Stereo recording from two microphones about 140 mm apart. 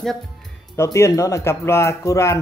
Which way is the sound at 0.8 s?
20° left (ahead or behind).